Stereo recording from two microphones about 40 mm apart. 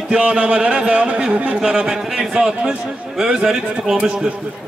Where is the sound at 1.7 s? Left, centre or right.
Centre.